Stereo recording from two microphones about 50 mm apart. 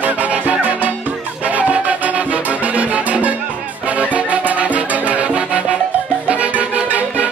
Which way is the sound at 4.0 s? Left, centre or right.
Right.